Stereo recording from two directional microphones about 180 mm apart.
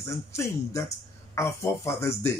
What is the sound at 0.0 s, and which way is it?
Speech, 15° left (ahead or behind).